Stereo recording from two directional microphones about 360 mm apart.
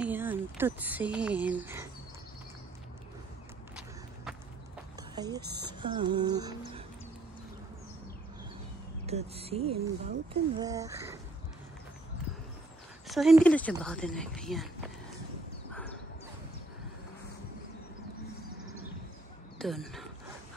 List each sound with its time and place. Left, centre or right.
0.0 s speech: centre
3.7 s run: centre
5.1 s speech: centre
9.0 s speech: centre
13.0 s speech: centre
19.6 s speech: centre